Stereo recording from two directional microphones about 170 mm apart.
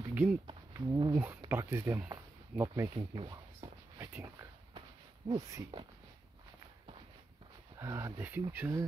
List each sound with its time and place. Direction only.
0.1 s a sound: 10° right (ahead or behind)
0.7 s speech: 20° right (ahead or behind)
3.0 s speech: 30° right (ahead or behind)
3.6 s a sound: 20° right (ahead or behind)
4.0 s walk: 15° right (ahead or behind)
5.3 s speech: 20° right (ahead or behind)
7.7 s speech: 20° right (ahead or behind)